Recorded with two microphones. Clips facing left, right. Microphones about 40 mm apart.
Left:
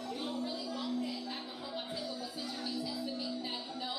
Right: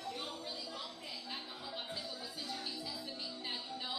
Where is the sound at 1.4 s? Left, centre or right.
Centre.